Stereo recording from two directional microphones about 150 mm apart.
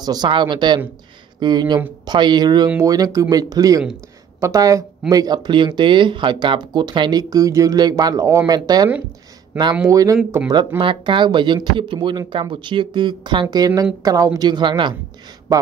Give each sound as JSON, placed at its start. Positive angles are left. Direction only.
{"t": 0.0, "sound": "speech", "side_deg": -25}
{"t": 10.8, "sound": "speech", "side_deg": -35}